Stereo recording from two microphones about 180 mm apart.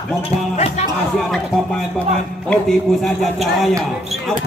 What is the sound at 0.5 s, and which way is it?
Speech, 35° left (ahead or behind).